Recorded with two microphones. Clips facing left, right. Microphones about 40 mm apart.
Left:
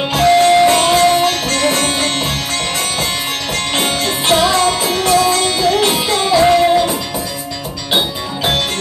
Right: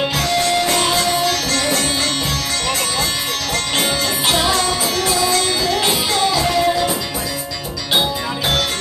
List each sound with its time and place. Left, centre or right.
0.1 s music: left
3.8 s music: left